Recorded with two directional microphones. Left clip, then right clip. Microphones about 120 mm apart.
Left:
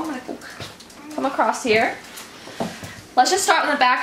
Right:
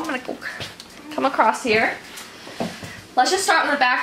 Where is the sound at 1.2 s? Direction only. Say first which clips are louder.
Right 2 dB; 20° right (ahead or behind).